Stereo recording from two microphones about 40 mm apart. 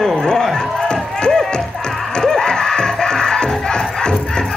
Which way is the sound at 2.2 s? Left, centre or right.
Centre.